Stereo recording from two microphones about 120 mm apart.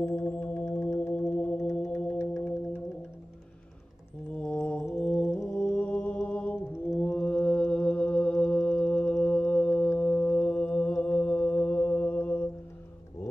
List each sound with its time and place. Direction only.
0.0 s music: 20° left (ahead or behind)
4.4 s music: 10° left (ahead or behind)
4.8 s brass instrument: centre (ahead or behind)
5.5 s mantra: 10° left (ahead or behind)
7.0 s music: 10° left (ahead or behind)